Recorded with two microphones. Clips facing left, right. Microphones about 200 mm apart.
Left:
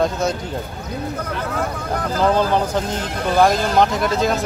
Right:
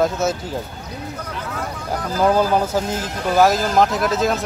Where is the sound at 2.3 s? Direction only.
5° right (ahead or behind).